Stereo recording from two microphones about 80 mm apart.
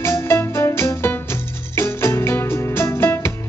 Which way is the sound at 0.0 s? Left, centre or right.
Left.